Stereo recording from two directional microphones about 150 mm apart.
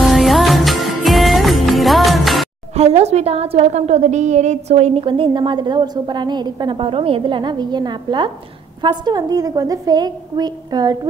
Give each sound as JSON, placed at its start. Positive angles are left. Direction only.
{"t": 0.0, "sound": "music", "side_deg": 0}
{"t": 2.7, "sound": "a woman's voice", "side_deg": -45}
{"t": 5.0, "sound": "a woman's voice", "side_deg": -35}